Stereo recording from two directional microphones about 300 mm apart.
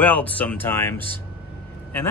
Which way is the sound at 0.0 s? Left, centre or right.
Centre.